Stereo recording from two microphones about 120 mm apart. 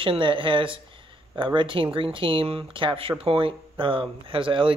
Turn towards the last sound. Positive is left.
turn(degrees=-45)  # may be behind; listen again after turning